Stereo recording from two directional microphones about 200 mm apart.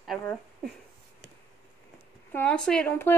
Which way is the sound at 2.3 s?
5° left (ahead or behind).